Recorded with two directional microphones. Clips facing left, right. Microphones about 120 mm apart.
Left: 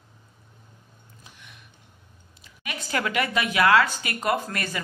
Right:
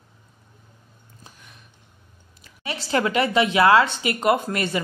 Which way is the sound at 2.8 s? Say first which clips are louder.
Right 5 dB; 30° right (ahead or behind).